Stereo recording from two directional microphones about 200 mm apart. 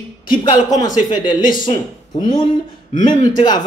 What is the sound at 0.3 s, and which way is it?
Speech, 20° left (ahead or behind).